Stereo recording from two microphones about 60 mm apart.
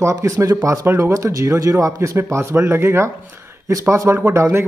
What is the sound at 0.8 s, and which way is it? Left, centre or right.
Speech, right.